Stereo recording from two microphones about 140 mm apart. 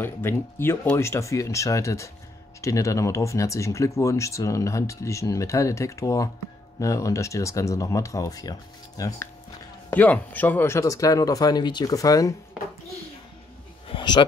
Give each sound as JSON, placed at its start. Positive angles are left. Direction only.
{"t": 0.0, "sound": "speech", "side_deg": 15}
{"t": 9.8, "sound": "speech", "side_deg": 10}
{"t": 13.8, "sound": "a sound", "side_deg": 35}